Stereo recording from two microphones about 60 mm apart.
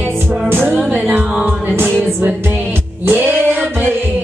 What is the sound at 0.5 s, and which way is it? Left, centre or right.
Music, right.